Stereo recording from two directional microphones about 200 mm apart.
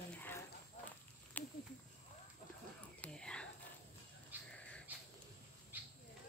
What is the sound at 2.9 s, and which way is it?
Whispering, 5° left (ahead or behind).